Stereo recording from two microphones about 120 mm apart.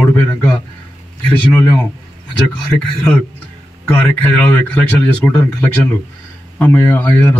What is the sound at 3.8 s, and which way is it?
Speech, 15° left (ahead or behind).